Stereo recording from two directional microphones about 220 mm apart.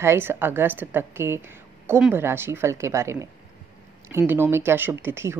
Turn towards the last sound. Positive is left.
turn(degrees=-10)  # may be behind; listen again after turning